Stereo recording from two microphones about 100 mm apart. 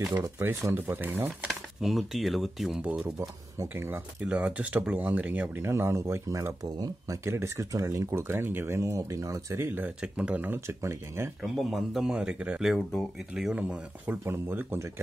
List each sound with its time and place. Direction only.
0.4 s speech: 25° right (ahead or behind)
1.5 s speech: centre (ahead or behind)
2.8 s speech: 15° right (ahead or behind)
11.4 s speech: centre (ahead or behind)
14.2 s speech: 20° right (ahead or behind)